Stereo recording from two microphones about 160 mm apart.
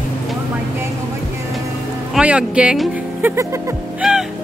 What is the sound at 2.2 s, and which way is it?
Speech, 5° right (ahead or behind).